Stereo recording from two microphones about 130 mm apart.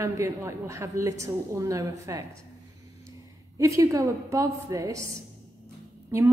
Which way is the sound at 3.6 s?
25° right (ahead or behind).